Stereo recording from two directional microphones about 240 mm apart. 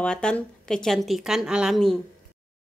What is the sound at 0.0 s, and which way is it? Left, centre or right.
A woman's voice, centre.